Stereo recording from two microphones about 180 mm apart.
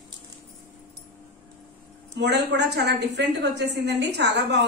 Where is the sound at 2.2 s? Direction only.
70° right (ahead or behind).